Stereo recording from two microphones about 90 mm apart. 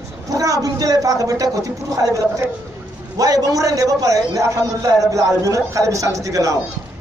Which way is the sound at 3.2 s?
45° right (ahead or behind).